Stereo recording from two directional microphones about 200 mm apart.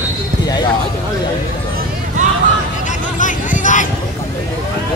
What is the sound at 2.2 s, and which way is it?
Hubbub, 40° right (ahead or behind).